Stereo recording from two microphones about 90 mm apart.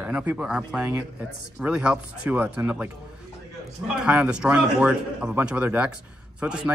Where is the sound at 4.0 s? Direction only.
10° right (ahead or behind).